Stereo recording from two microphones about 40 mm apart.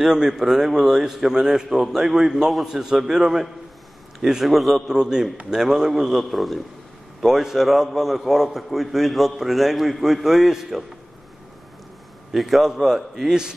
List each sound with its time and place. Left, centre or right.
0.0 s a man's voice: centre
4.5 s a man's voice: centre
4.8 s a man's voice: centre
12.3 s a man's voice: centre